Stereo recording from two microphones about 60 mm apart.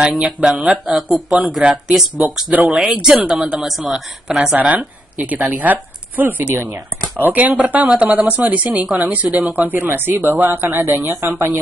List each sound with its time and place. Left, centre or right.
0.0 s speech: centre
2.5 s speech: right
11.1 s speech: right